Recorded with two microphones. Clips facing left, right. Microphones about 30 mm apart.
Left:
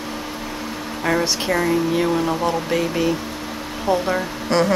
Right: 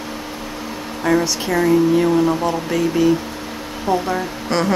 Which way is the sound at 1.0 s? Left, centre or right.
Centre.